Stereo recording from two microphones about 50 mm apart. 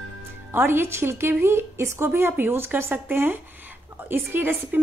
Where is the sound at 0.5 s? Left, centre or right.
Right.